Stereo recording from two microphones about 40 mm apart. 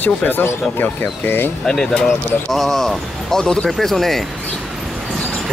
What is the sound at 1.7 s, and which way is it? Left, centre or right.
Speech, centre.